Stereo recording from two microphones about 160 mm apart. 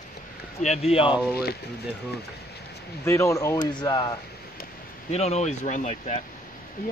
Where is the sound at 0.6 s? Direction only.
40° left (ahead or behind).